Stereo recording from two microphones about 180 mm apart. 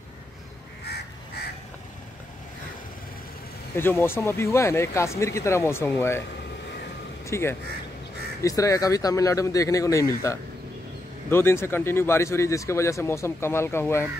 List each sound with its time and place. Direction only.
0.8 s crow: 65° left (ahead or behind)
3.7 s speech: 10° left (ahead or behind)
7.2 s speech: 15° left (ahead or behind)